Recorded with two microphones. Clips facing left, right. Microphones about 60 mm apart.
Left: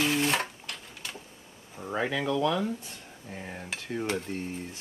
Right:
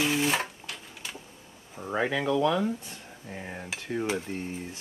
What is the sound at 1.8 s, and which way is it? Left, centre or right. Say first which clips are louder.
Speech: right 2 dB; centre.